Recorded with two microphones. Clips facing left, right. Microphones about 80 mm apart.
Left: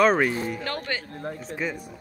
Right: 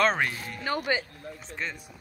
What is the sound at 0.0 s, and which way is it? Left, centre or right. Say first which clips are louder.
Speech: left 5 dB; centre.